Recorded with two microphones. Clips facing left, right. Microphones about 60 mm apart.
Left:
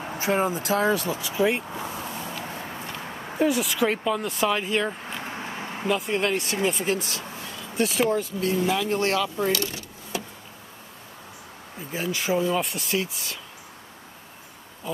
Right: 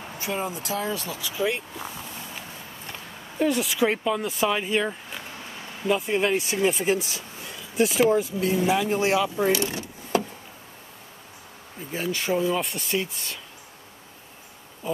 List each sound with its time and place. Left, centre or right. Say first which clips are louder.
0.2 s speech: left 6 dB; left
1.2 s speech: left 1 dB; left
2.4 s vehicle: left 6 dB; left
3.3 s speech: even; centre
5.2 s a sound: left 6 dB; left
5.9 s speech: right 2 dB; centre; by 9.8 s right
10.1 s a sound: right 8 dB; right
11.9 s speech: even; centre